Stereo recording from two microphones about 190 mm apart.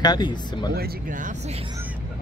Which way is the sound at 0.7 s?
50° right (ahead or behind).